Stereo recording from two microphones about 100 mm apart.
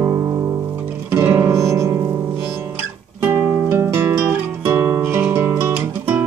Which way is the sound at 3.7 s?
25° right (ahead or behind).